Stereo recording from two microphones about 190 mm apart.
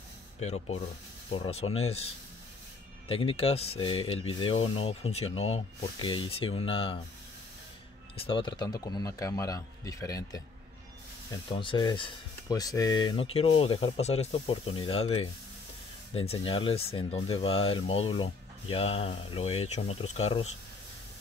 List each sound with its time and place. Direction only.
0.4 s speech: 35° left (ahead or behind)
3.1 s speech: 30° left (ahead or behind)
8.2 s speech: 25° left (ahead or behind)
11.5 s speech: 25° left (ahead or behind)